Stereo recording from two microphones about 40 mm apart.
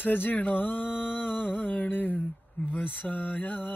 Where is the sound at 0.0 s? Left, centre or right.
Left.